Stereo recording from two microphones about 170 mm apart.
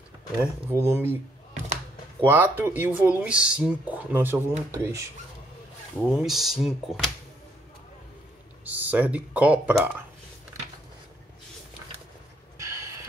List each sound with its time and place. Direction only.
0.4 s speech: 15° right (ahead or behind)
2.2 s speech: 10° right (ahead or behind)
5.9 s speech: 5° right (ahead or behind)
8.6 s speech: 10° right (ahead or behind)
12.5 s a sound: 20° right (ahead or behind)